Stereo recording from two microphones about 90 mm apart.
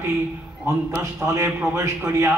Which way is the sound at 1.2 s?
30° right (ahead or behind).